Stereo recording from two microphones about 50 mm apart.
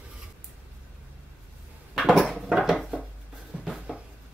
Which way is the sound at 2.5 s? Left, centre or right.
Centre.